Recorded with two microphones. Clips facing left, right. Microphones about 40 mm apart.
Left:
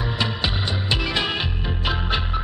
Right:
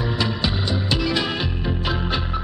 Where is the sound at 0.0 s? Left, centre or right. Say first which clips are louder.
Right 1 dB; centre.